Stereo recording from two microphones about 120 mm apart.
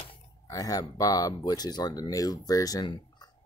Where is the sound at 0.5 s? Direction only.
30° left (ahead or behind).